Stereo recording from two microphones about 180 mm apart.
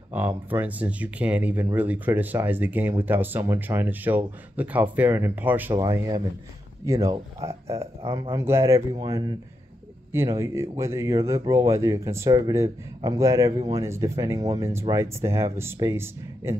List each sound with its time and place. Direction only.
0.1 s speech: 10° right (ahead or behind)